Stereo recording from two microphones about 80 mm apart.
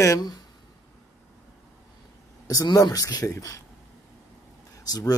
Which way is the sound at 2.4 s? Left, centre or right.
Left.